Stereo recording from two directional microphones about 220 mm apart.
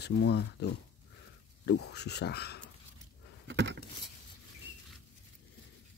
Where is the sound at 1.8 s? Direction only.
50° left (ahead or behind).